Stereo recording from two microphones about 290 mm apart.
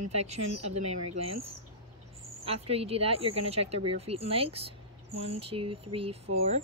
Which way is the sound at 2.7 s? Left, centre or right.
Centre.